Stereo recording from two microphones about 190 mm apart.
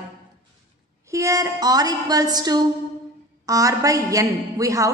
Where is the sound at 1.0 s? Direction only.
15° right (ahead or behind).